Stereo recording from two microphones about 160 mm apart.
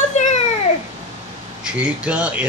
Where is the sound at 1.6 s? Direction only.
5° right (ahead or behind).